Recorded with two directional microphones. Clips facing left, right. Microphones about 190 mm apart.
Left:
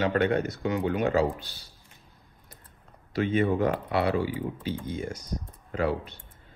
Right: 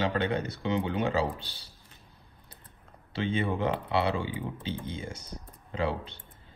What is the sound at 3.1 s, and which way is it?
Speech, 25° right (ahead or behind).